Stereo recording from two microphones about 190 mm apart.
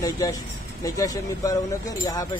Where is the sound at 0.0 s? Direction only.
20° left (ahead or behind).